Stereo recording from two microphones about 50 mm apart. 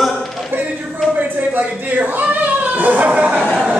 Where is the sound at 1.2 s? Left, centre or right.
Right.